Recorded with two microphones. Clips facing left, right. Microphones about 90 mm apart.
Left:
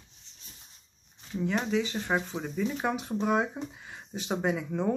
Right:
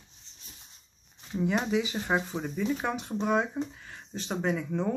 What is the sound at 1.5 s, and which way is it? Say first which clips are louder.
Speech: even; 5° right (ahead or behind).